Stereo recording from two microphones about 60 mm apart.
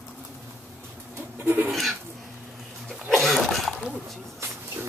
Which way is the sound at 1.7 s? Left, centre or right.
Centre.